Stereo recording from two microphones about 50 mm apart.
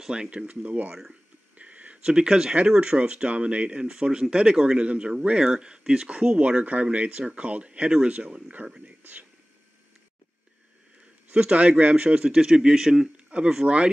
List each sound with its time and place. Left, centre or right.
0.0 s speech: centre
1.6 s a sound: right
2.0 s speech: centre
11.2 s speech: right
13.3 s speech: right